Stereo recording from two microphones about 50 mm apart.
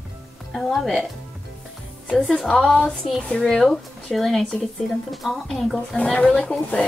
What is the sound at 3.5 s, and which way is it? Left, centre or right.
A woman's voice, centre.